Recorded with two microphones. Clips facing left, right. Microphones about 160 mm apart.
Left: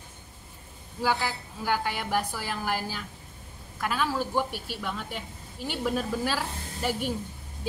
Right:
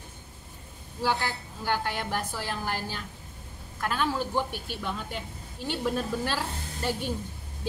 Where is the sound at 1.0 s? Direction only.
5° left (ahead or behind).